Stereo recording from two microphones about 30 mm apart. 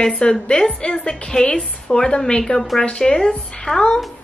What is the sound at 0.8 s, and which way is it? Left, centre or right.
Speech, left.